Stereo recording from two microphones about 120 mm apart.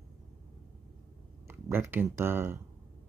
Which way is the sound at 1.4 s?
20° right (ahead or behind).